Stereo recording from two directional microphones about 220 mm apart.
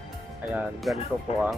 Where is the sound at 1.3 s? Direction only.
30° left (ahead or behind).